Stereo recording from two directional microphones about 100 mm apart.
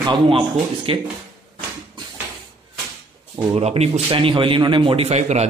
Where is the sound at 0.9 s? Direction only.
60° right (ahead or behind).